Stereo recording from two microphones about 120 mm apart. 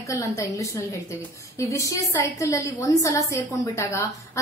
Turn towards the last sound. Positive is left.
turn(degrees=25)  # may be behind; listen again after turning